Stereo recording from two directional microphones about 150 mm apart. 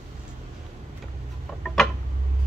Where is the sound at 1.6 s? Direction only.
5° left (ahead or behind).